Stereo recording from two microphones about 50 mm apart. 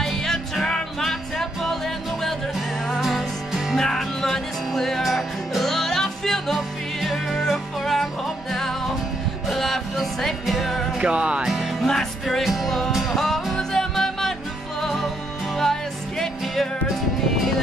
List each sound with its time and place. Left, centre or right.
0.0 s music: centre
3.0 s music: centre
11.0 s music: right
11.8 s music: centre